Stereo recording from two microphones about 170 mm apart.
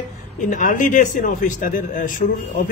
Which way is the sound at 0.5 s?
50° left (ahead or behind).